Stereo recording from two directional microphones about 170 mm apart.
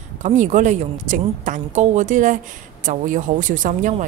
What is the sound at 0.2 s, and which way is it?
Speech, 45° right (ahead or behind).